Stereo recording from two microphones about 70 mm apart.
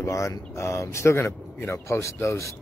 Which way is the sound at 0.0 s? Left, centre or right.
Left.